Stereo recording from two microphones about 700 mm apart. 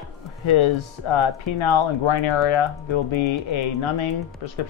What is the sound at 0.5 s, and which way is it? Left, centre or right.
Speech, left.